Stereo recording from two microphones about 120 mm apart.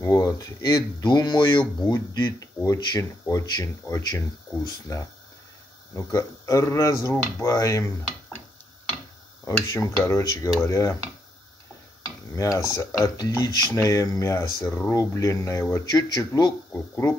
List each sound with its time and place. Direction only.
0.0 s speech: 30° left (ahead or behind)
9.4 s speech: 20° left (ahead or behind)
12.4 s speech: 30° left (ahead or behind)